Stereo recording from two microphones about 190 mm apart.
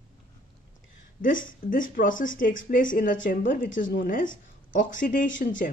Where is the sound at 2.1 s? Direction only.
90° left.